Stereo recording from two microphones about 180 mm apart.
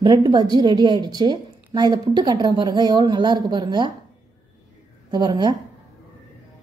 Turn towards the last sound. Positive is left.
turn(degrees=-25)  # may be behind; listen again after turning